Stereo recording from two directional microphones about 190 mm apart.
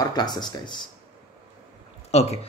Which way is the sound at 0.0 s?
20° left (ahead or behind).